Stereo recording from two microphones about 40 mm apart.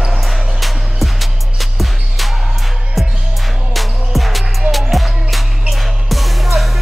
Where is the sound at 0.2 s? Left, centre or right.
Centre.